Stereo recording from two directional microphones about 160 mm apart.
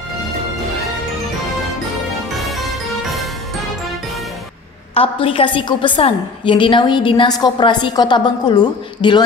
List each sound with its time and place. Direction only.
2.3 s music: centre (ahead or behind)
4.9 s a woman's voice: 35° left (ahead or behind)